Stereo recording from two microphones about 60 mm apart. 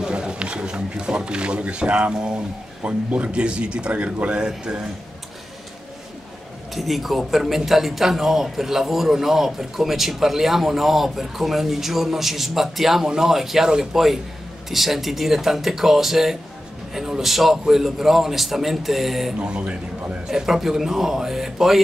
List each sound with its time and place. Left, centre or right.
0.0 s speech: centre
6.7 s a man's voice: centre
19.4 s a man's voice: centre
20.2 s a man's voice: centre